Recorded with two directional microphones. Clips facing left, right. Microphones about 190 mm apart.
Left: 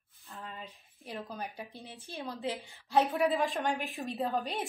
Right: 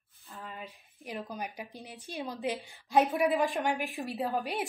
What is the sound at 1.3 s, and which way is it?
A woman's voice, 15° right (ahead or behind).